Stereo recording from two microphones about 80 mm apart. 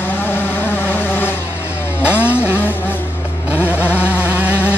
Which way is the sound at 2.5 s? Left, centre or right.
Left.